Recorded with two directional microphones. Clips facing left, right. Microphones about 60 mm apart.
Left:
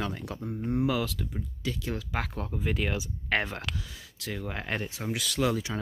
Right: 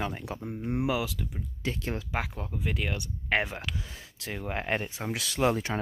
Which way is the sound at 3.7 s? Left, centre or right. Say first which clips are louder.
Right 1 dB; right.